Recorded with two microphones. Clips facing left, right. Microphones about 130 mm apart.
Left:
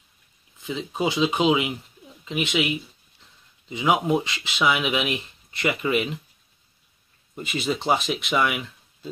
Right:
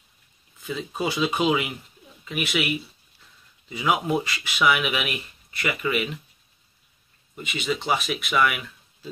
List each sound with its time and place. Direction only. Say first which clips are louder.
0.6 s speech: left 2 dB; 15° left (ahead or behind)
7.3 s speech: left 1 dB; 35° left (ahead or behind)